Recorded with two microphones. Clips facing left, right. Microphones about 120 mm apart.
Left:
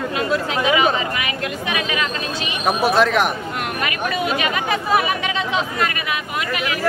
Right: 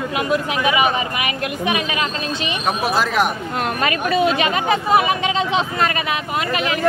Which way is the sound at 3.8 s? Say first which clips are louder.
Right 6 dB; 30° right (ahead or behind).